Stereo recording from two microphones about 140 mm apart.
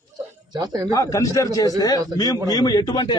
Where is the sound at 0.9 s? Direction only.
25° left (ahead or behind).